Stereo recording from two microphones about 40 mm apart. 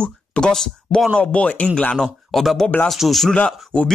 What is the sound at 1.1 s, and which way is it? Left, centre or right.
Speech, left.